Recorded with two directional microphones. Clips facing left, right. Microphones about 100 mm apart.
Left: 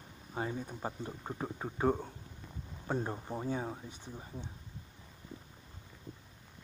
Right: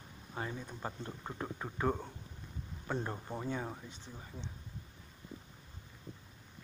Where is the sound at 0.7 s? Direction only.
15° left (ahead or behind).